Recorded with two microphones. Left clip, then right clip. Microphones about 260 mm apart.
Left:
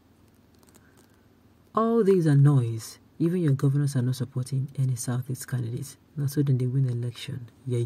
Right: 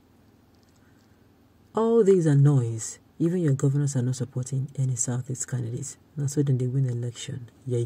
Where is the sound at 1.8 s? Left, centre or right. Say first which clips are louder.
Right 2 dB; centre.